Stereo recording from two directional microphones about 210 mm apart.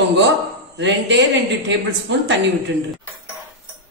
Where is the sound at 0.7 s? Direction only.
55° right (ahead or behind).